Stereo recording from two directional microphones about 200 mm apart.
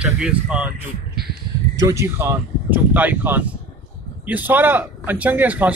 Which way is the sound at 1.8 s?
15° right (ahead or behind).